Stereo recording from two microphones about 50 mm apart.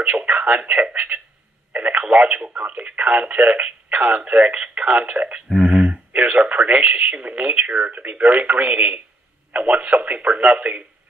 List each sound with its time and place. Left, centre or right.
0.0 s speech: right